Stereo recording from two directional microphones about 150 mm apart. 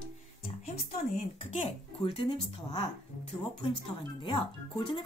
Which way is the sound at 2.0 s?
35° left (ahead or behind).